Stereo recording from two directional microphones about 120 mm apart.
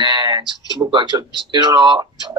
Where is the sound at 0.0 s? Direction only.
35° right (ahead or behind).